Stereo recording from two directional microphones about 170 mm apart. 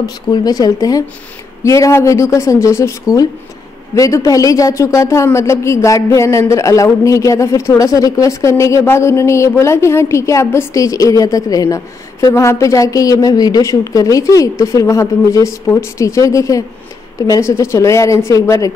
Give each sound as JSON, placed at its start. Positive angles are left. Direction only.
{"t": 0.0, "sound": "speech", "side_deg": 20}